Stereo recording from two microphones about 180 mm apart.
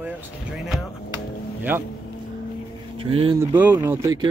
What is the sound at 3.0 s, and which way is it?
Speech, 30° right (ahead or behind).